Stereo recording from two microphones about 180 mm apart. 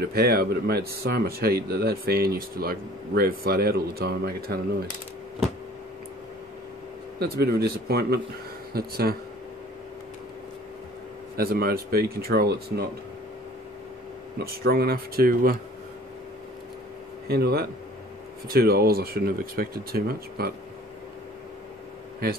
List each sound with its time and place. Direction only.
0.0 s speech: 60° right (ahead or behind)
7.2 s speech: 60° right (ahead or behind)
11.3 s speech: 60° right (ahead or behind)
14.4 s speech: 60° right (ahead or behind)
17.3 s speech: 60° right (ahead or behind)